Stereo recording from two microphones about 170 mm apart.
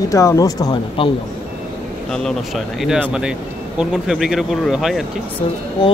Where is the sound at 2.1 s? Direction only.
Centre (ahead or behind).